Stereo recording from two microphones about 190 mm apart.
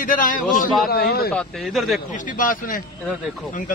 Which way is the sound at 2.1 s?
45° left (ahead or behind).